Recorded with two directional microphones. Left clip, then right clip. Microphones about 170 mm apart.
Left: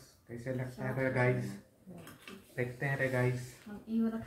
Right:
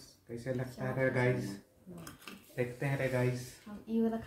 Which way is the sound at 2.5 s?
15° right (ahead or behind).